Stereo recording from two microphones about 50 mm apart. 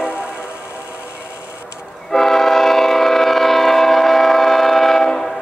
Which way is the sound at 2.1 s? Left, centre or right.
Centre.